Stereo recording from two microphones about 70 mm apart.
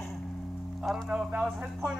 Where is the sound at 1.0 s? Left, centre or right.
Centre.